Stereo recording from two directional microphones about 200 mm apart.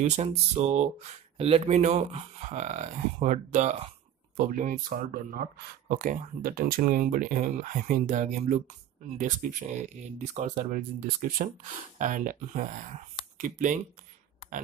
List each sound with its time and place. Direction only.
0.0 s speech: 35° right (ahead or behind)